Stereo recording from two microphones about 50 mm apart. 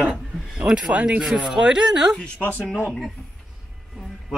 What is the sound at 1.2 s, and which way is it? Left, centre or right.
Speech, centre.